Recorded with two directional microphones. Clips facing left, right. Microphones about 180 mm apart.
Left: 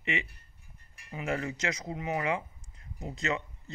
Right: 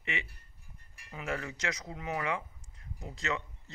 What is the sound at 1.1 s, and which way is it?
Speech, 20° left (ahead or behind).